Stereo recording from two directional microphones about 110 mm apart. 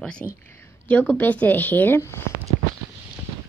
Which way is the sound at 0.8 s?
15° left (ahead or behind).